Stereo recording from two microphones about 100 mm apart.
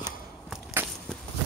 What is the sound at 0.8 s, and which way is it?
Walk, 20° right (ahead or behind).